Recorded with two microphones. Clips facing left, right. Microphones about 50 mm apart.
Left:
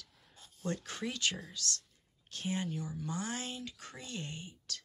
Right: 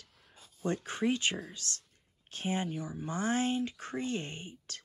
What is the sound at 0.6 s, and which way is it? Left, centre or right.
Speech, right.